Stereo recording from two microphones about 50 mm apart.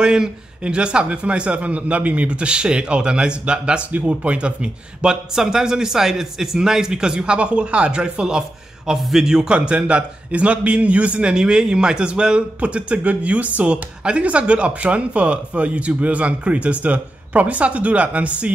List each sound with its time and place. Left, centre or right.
0.0 s a man's voice: centre
8.9 s a man's voice: centre; by 18.5 s right